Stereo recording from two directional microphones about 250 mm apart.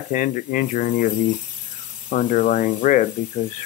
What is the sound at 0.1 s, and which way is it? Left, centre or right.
Speech, left.